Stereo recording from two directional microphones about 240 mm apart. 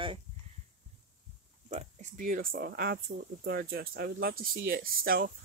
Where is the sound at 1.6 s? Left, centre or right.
Right.